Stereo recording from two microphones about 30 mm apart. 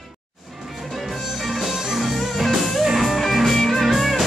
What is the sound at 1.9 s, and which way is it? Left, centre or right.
Music, centre.